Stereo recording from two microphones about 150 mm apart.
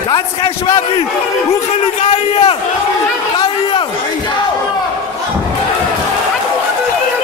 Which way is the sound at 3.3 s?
35° left (ahead or behind).